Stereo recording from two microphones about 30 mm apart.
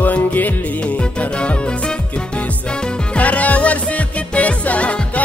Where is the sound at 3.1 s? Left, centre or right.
Left.